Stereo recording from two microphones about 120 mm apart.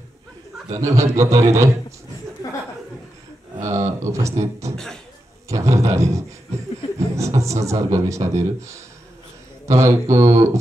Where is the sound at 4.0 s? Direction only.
25° right (ahead or behind).